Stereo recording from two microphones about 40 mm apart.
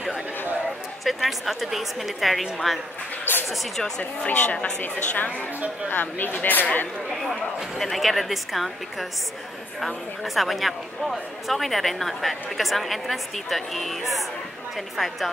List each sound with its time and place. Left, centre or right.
1.0 s a woman's voice: centre
3.3 s music: left
4.3 s a woman's voice: left
5.9 s speech: left
7.8 s a woman's voice: centre
10.2 s a woman's voice: centre